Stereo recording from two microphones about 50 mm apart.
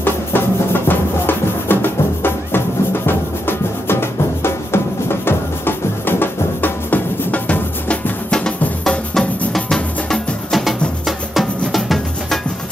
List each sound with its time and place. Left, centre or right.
0.0 s music: left
7.9 s music: centre
10.5 s music: centre